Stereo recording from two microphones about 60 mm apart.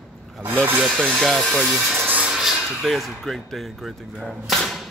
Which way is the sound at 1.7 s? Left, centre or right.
Centre.